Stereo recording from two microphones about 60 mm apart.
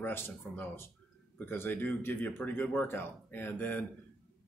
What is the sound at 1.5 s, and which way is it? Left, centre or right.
Speech, left.